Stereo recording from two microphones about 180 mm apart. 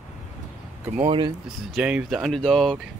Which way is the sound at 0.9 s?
30° right (ahead or behind).